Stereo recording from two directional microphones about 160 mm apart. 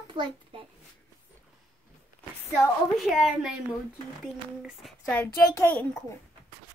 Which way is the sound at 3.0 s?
Centre (ahead or behind).